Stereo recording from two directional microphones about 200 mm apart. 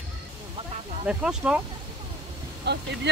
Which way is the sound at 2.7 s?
55° right (ahead or behind).